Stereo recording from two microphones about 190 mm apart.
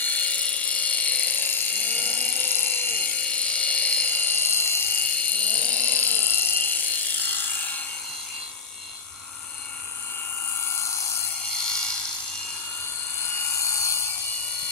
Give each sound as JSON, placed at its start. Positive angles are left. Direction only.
{"t": 0.0, "sound": "helicopter", "side_deg": 5}
{"t": 11.5, "sound": "a sound", "side_deg": 5}
{"t": 13.6, "sound": "helicopter", "side_deg": 15}